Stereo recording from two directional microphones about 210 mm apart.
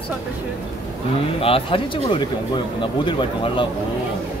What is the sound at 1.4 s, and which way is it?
Speech, 25° left (ahead or behind).